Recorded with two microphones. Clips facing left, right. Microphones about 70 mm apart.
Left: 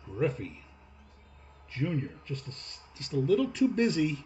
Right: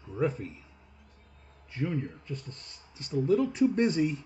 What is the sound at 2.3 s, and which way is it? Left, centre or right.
Speech, left.